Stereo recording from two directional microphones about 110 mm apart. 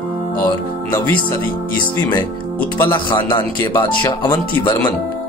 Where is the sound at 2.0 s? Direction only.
40° left (ahead or behind).